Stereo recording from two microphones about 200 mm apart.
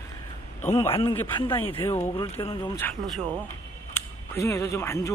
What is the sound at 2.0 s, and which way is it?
Speech, 25° left (ahead or behind).